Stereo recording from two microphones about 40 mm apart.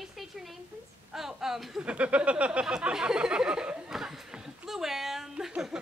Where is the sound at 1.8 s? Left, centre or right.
Right.